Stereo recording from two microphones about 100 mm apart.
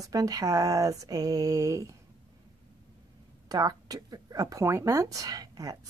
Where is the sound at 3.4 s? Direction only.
40° right (ahead or behind).